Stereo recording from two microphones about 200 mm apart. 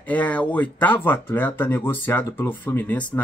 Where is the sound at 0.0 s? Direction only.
10° left (ahead or behind).